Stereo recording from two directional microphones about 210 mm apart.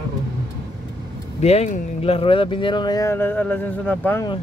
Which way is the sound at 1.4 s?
30° left (ahead or behind).